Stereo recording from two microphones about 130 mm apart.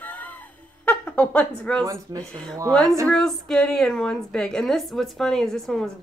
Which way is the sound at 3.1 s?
5° left (ahead or behind).